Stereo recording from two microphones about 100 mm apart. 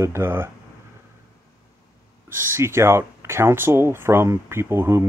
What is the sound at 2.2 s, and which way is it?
Speech, 25° right (ahead or behind).